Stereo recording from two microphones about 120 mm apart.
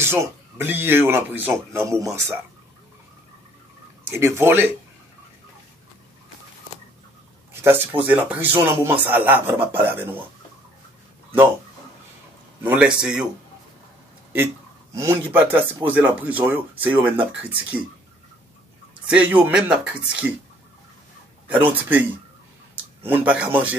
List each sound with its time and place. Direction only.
0.0 s speech: 20° right (ahead or behind)
4.1 s speech: 20° right (ahead or behind)
7.6 s speech: 15° right (ahead or behind)
12.6 s speech: 10° right (ahead or behind)
15.0 s speech: 20° right (ahead or behind)
19.0 s speech: 10° right (ahead or behind)
21.5 s speech: 15° right (ahead or behind)
23.0 s speech: 15° right (ahead or behind)